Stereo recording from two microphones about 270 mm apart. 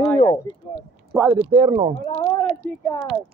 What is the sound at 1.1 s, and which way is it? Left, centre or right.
Speech, centre.